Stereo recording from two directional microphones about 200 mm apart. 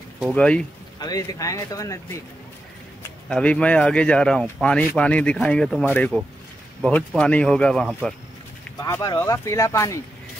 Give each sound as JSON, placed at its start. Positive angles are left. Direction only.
{"t": 0.2, "sound": "speech", "side_deg": 5}
{"t": 0.9, "sound": "speech", "side_deg": 20}
{"t": 3.3, "sound": "speech", "side_deg": 5}
{"t": 8.8, "sound": "speech", "side_deg": 15}